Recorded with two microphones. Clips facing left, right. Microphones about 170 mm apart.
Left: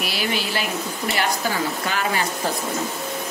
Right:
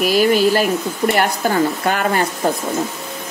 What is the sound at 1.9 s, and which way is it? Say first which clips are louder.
Speech: right 6 dB; 50° right (ahead or behind).